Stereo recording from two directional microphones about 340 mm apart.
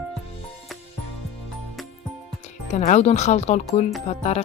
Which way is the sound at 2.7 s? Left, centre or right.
Centre.